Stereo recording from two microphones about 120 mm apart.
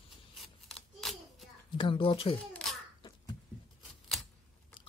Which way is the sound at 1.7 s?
45° left (ahead or behind).